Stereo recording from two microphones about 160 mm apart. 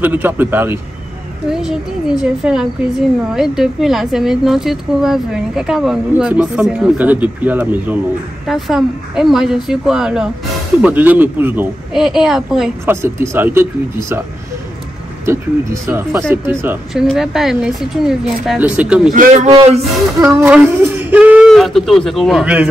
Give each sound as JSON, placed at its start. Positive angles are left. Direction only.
{"t": 0.0, "sound": "speech", "side_deg": -10}
{"t": 1.5, "sound": "a woman's voice", "side_deg": 0}
{"t": 11.9, "sound": "a woman's voice", "side_deg": 0}
{"t": 12.8, "sound": "speech", "side_deg": -15}
{"t": 15.2, "sound": "speech", "side_deg": -15}
{"t": 16.9, "sound": "a woman's voice", "side_deg": 0}
{"t": 20.2, "sound": "speech", "side_deg": -15}